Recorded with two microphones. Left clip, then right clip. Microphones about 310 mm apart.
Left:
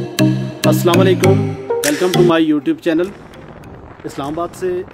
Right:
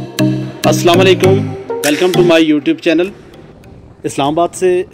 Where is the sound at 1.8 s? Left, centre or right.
Centre.